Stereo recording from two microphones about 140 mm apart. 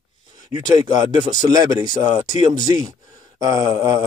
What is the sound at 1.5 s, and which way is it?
Speech, 25° right (ahead or behind).